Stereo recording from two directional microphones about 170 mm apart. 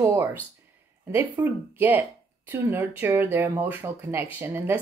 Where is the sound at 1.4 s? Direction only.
10° right (ahead or behind).